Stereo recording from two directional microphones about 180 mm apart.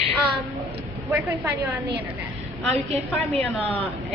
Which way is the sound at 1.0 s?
15° right (ahead or behind).